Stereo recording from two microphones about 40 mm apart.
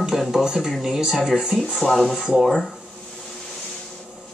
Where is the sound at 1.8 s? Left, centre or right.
Centre.